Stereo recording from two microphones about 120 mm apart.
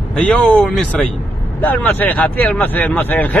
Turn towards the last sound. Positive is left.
turn(degrees=15)  # may be behind; listen again after turning